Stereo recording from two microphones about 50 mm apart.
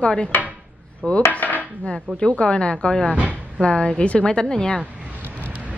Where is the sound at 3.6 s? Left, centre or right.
Left.